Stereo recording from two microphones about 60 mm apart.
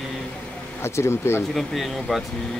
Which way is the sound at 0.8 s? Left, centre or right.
Left.